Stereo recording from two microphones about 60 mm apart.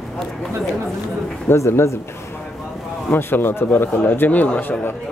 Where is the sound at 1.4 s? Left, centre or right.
Left.